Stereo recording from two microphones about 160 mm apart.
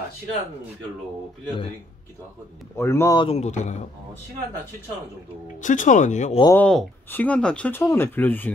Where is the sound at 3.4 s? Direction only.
45° left (ahead or behind).